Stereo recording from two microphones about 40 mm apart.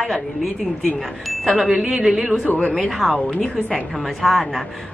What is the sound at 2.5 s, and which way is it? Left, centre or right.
Speech, left.